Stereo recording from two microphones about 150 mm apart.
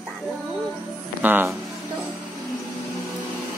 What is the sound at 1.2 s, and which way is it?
Speech, 10° right (ahead or behind).